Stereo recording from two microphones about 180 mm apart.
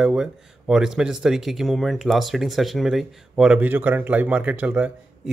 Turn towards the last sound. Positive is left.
turn(degrees=-10)  # may be behind; listen again after turning